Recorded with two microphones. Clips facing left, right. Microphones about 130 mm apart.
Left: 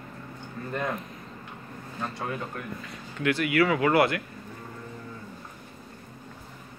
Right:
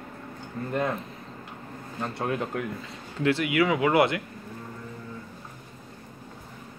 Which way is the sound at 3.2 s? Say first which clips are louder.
Even; 25° right (ahead or behind).